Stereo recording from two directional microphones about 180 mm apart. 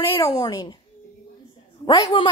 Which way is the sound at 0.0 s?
15° left (ahead or behind).